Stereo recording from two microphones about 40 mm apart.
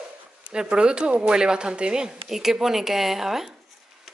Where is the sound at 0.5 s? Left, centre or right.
Right.